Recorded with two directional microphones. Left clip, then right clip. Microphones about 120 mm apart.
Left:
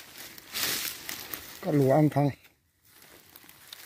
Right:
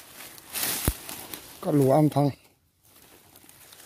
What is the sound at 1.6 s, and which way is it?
Speech, 15° right (ahead or behind).